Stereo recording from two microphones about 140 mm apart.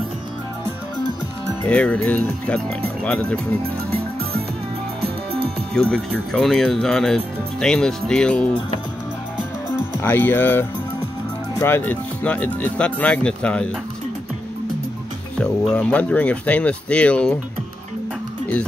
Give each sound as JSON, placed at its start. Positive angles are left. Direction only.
{"t": 1.7, "sound": "speech", "side_deg": 10}
{"t": 5.0, "sound": "music", "side_deg": -45}
{"t": 5.8, "sound": "speech", "side_deg": 5}
{"t": 9.8, "sound": "speech", "side_deg": 15}
{"t": 15.4, "sound": "speech", "side_deg": 5}